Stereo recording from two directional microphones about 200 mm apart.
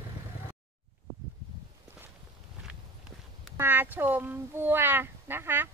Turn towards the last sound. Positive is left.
turn(degrees=-10)  # may be behind; listen again after turning